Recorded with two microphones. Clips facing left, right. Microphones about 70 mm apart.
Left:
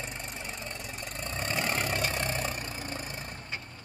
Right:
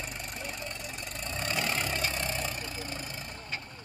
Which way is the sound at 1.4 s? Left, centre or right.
Left.